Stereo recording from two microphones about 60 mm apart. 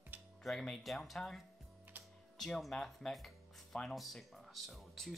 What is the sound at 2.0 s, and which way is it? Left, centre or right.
Music, right.